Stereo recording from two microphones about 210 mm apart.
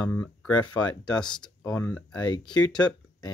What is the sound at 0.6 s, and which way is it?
Speech, 20° left (ahead or behind).